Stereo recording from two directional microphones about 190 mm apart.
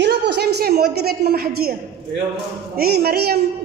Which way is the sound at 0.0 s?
65° right (ahead or behind).